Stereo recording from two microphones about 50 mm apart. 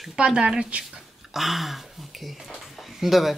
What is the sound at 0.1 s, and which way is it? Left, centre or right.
Speech, centre.